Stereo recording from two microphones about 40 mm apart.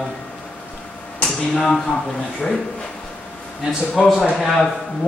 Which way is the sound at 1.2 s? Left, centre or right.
Centre.